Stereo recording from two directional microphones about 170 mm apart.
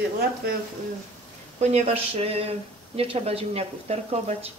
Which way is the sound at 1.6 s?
35° right (ahead or behind).